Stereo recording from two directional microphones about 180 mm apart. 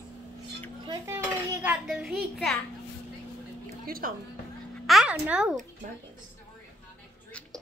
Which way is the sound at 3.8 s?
55° right (ahead or behind).